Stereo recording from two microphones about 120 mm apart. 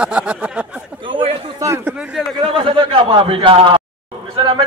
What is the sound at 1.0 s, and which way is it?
Chatter, 45° right (ahead or behind).